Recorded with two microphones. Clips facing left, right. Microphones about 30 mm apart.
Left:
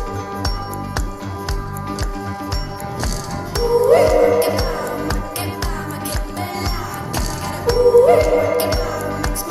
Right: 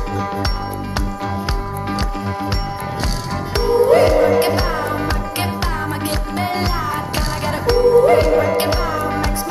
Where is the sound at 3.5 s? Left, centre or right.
Right.